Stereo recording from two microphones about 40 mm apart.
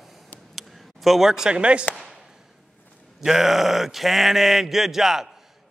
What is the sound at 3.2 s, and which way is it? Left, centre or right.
Speech, centre.